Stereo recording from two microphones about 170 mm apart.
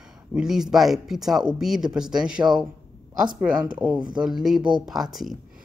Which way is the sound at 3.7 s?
10° right (ahead or behind).